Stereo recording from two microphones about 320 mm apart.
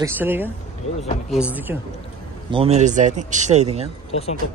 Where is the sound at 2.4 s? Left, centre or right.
Centre.